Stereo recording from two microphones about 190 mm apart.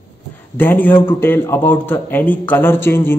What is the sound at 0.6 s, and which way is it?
A man's voice, 10° left (ahead or behind).